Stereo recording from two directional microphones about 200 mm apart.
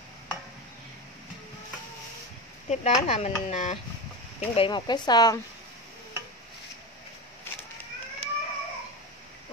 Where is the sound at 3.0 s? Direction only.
35° left (ahead or behind).